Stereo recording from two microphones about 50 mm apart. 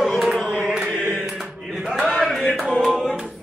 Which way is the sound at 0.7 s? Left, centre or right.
Centre.